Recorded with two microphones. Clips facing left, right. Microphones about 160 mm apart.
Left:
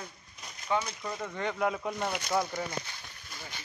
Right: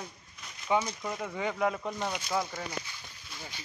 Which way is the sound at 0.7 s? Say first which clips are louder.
Right 2 dB; 15° right (ahead or behind).